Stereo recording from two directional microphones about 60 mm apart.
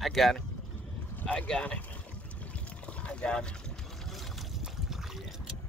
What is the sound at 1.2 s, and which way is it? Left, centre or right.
Speech, centre.